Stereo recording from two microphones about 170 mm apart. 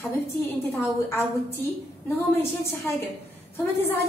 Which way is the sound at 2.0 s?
15° left (ahead or behind).